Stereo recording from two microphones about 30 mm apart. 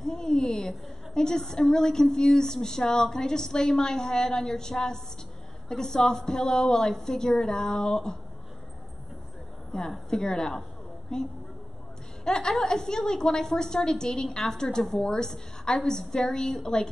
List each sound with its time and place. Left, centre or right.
0.0 s a woman's voice: centre
9.7 s a woman's voice: centre
12.3 s a woman's voice: centre